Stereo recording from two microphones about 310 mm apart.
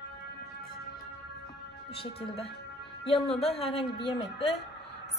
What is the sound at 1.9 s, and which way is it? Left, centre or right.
A woman's voice, centre.